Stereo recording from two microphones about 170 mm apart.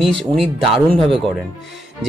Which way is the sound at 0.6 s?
30° right (ahead or behind).